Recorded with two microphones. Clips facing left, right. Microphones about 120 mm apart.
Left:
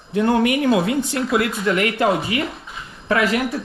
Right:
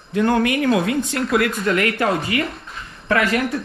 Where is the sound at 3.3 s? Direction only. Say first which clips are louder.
Right 1 dB; 5° left (ahead or behind).